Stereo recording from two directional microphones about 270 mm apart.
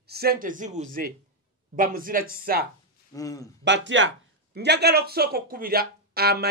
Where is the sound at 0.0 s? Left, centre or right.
Right.